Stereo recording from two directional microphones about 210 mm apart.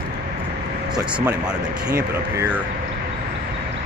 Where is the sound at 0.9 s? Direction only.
15° right (ahead or behind).